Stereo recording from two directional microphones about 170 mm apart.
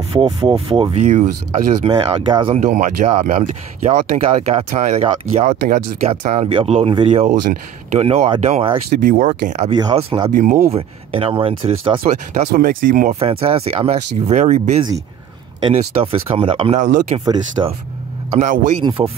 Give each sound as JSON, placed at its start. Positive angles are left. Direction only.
{"t": 0.1, "sound": "speech", "side_deg": -30}
{"t": 1.0, "sound": "speech", "side_deg": -45}
{"t": 2.6, "sound": "speech", "side_deg": -50}
{"t": 9.0, "sound": "speech", "side_deg": -50}
{"t": 9.7, "sound": "speech", "side_deg": -30}
{"t": 10.3, "sound": "speech", "side_deg": -55}
{"t": 10.7, "sound": "speech", "side_deg": -35}
{"t": 12.0, "sound": "speech", "side_deg": -50}
{"t": 13.2, "sound": "speech", "side_deg": -35}
{"t": 18.4, "sound": "speech", "side_deg": -45}